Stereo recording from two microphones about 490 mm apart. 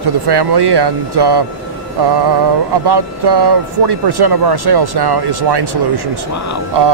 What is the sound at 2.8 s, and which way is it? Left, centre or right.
Speech, right.